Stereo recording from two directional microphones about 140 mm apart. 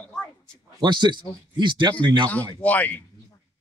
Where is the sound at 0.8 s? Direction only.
30° right (ahead or behind).